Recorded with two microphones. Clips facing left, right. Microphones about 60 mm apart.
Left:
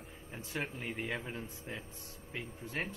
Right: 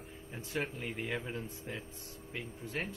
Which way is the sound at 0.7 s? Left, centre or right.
Centre.